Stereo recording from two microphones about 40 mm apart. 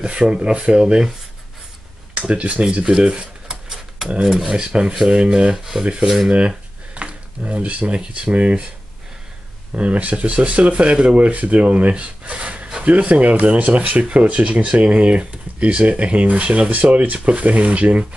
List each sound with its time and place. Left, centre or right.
0.0 s speech: right
2.1 s speech: right
4.2 s dishes: centre
4.6 s speech: right
6.0 s dishes: centre
7.0 s speech: right
9.8 s speech: right
11.1 s speech: right